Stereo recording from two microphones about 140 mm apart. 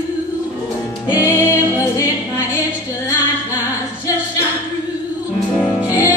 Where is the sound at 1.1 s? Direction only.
20° left (ahead or behind).